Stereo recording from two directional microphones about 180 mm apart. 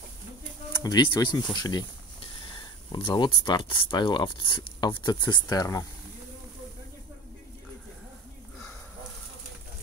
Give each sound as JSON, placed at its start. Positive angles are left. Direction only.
{"t": 0.8, "sound": "speech", "side_deg": 25}
{"t": 2.9, "sound": "speech", "side_deg": 30}